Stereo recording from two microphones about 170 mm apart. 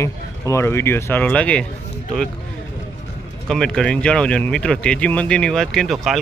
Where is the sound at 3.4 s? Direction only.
5° left (ahead or behind).